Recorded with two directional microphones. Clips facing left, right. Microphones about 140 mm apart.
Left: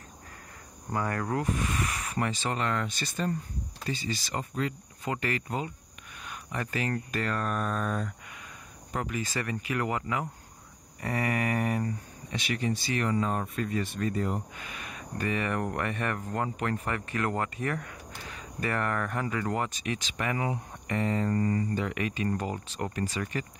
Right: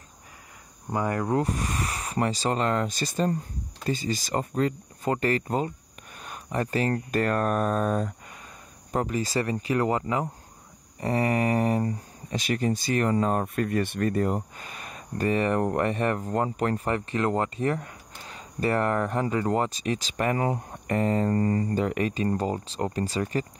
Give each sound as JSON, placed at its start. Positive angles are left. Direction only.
{"t": 0.9, "sound": "speech", "side_deg": -20}
{"t": 1.4, "sound": "speech", "side_deg": -35}